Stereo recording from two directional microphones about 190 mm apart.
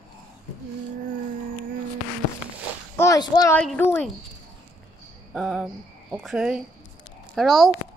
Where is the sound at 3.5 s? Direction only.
10° left (ahead or behind).